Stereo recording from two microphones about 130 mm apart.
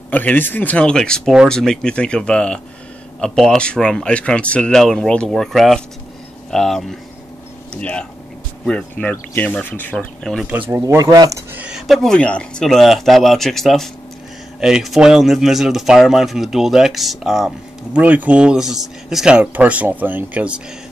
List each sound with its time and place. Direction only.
0.1 s speech: 10° left (ahead or behind)
10.4 s speech: 15° right (ahead or behind)
11.0 s speech: 30° right (ahead or behind)
11.5 s speech: 5° right (ahead or behind)